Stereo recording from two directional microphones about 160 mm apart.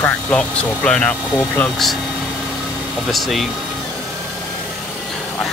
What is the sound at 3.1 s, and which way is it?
Speech, centre (ahead or behind).